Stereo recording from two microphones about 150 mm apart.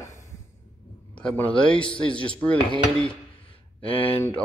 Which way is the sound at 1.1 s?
10° left (ahead or behind).